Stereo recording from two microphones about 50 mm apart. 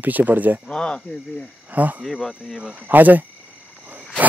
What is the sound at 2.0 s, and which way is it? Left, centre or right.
Speech, centre.